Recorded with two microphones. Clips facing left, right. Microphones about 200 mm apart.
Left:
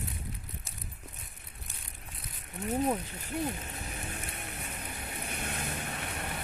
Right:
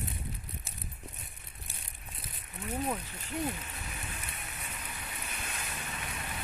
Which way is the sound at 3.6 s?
45° left (ahead or behind).